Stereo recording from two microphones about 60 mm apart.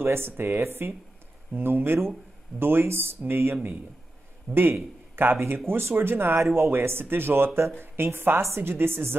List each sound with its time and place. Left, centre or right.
0.0 s speech: right